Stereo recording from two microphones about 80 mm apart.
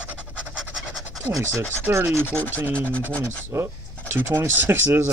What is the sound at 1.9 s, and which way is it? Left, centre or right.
Rub, right.